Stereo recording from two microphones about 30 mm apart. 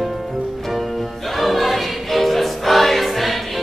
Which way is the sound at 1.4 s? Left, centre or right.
Centre.